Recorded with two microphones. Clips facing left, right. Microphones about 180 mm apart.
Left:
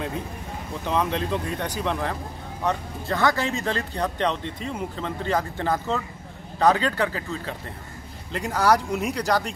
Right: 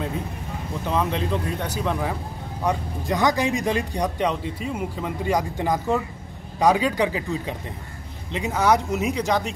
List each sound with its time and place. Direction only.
0.8 s a man's voice: 5° right (ahead or behind)